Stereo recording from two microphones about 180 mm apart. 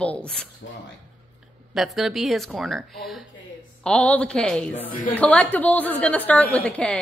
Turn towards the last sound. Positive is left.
turn(degrees=5)  # may be behind; listen again after turning